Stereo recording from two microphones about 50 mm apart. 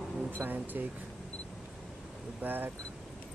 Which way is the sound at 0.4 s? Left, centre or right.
Right.